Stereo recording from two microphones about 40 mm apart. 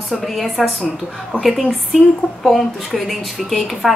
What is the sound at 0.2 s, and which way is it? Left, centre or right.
A woman's voice, centre.